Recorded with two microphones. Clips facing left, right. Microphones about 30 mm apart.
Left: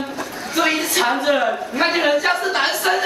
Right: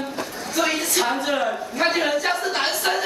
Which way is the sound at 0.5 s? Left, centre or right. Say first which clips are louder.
Left 4 dB; left.